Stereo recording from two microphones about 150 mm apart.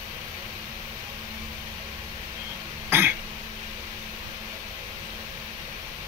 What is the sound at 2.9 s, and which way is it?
Cough, 15° right (ahead or behind).